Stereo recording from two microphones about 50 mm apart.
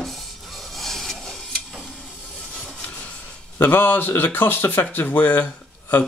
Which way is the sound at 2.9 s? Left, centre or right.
Left.